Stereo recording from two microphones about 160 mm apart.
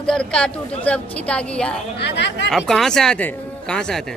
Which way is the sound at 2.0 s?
90° left.